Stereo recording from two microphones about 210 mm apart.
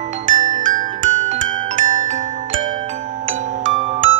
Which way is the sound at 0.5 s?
40° right (ahead or behind).